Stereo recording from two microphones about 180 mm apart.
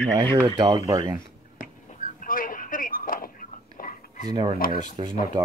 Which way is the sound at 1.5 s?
50° left (ahead or behind).